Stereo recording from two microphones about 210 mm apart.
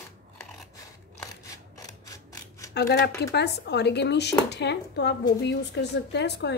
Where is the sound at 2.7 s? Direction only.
50° left (ahead or behind).